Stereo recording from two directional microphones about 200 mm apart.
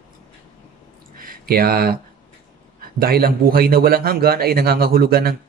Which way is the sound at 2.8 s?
50° right (ahead or behind).